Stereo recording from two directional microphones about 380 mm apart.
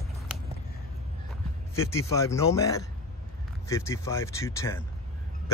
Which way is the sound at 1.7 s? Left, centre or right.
Centre.